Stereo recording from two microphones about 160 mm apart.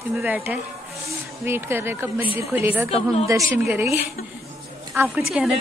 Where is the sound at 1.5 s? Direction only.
15° right (ahead or behind).